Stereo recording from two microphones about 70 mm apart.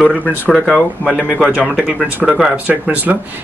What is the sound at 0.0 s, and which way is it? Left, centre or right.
Speech, centre.